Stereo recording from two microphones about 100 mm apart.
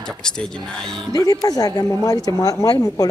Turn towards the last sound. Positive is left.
turn(degrees=40)  # may be behind; listen again after turning